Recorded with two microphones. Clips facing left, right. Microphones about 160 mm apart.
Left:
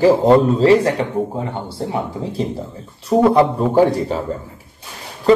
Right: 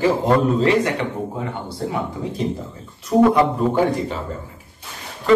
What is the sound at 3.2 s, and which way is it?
Speech, 35° left (ahead or behind).